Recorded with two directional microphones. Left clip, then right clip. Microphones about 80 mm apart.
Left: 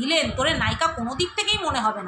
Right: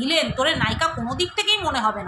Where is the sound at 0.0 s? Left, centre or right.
Centre.